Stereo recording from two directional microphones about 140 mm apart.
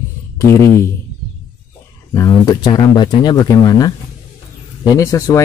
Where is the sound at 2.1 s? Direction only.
25° left (ahead or behind).